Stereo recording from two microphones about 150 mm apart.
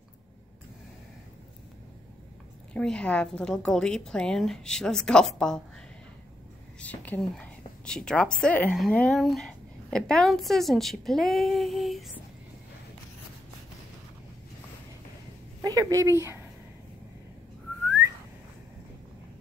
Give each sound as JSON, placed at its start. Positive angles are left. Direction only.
{"t": 2.7, "sound": "speech", "side_deg": 5}
{"t": 6.8, "sound": "a woman's voice", "side_deg": 10}
{"t": 15.6, "sound": "speech", "side_deg": -25}